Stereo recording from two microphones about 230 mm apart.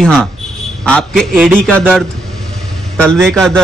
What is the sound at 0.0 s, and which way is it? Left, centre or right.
A man's voice, centre.